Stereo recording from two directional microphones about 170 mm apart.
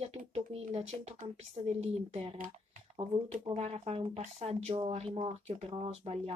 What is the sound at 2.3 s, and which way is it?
Speech, 55° right (ahead or behind).